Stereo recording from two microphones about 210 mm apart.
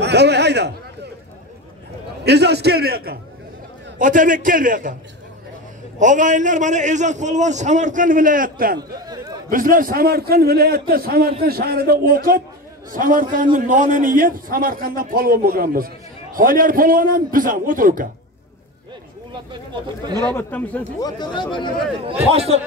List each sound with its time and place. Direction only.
0.0 s a man's voice: 55° right (ahead or behind)
2.2 s a man's voice: 50° right (ahead or behind)
5.9 s a man's voice: 35° right (ahead or behind)
8.7 s speech: 20° right (ahead or behind)
9.5 s a man's voice: 40° right (ahead or behind)
19.7 s speech: 20° right (ahead or behind)
20.3 s a man's voice: 5° left (ahead or behind)
21.0 s speech: 20° left (ahead or behind)
22.3 s speech: 30° right (ahead or behind)